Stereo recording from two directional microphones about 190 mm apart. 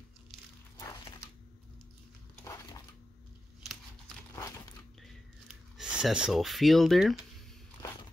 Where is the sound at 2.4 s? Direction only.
15° left (ahead or behind).